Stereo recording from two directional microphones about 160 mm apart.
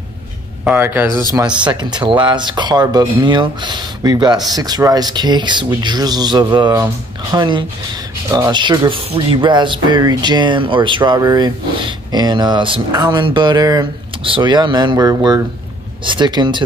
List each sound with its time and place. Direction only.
0.7 s speech: 10° right (ahead or behind)
1.7 s speech: 25° right (ahead or behind)